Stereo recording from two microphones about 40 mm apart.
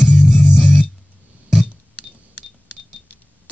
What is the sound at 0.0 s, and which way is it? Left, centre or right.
Music, centre.